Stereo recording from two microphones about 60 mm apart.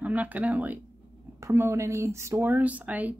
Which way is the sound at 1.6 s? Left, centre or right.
Right.